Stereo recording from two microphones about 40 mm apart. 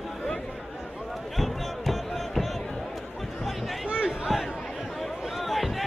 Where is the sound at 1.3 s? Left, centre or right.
Centre.